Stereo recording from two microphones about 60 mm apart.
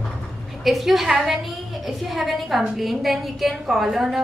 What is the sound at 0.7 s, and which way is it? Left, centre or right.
A woman's voice, centre.